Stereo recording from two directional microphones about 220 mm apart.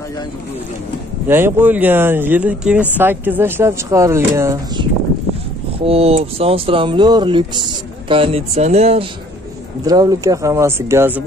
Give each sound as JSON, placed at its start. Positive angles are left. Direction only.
{"t": 1.3, "sound": "speech", "side_deg": -10}
{"t": 5.9, "sound": "speech", "side_deg": -25}
{"t": 9.8, "sound": "speech", "side_deg": -15}